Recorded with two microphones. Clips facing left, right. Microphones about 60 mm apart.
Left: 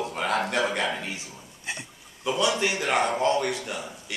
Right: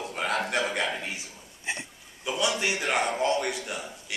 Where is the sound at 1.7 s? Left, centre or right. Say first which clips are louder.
Right 2 dB; right.